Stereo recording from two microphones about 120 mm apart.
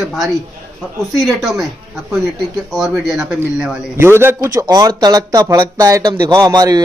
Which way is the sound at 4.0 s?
20° right (ahead or behind).